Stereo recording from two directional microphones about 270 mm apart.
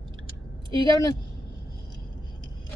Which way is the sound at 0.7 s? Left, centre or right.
Centre.